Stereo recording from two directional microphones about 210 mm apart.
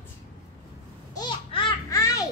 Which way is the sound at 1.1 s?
20° left (ahead or behind).